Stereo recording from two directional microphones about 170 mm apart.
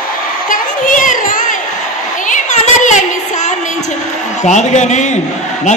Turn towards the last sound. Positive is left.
turn(degrees=45)  # may be behind; listen again after turning